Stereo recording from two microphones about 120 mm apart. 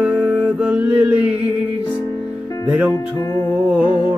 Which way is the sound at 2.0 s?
30° left (ahead or behind).